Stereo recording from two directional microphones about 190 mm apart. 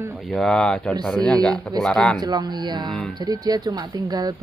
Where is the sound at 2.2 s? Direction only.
20° right (ahead or behind).